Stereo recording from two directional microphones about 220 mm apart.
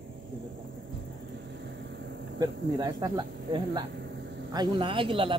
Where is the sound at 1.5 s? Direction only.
50° right (ahead or behind).